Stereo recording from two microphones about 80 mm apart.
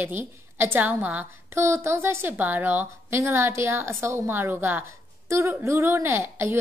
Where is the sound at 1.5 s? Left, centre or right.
Right.